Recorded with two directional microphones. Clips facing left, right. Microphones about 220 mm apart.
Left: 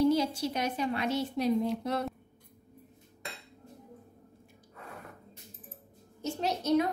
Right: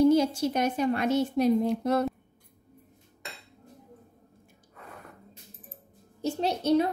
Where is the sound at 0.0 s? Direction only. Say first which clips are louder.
Right 5 dB; 45° right (ahead or behind).